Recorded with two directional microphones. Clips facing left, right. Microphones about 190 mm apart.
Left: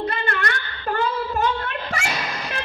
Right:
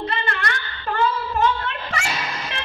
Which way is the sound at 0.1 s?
45° left (ahead or behind).